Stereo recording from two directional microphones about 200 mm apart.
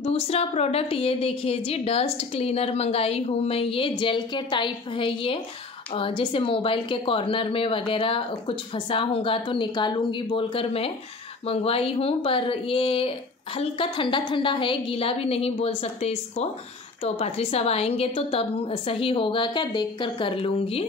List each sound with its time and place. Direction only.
0.0 s a woman's voice: 30° left (ahead or behind)